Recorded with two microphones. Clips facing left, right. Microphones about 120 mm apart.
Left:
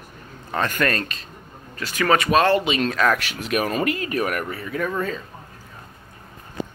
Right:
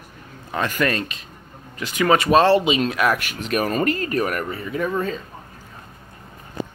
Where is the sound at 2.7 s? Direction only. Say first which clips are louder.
Even; 15° right (ahead or behind).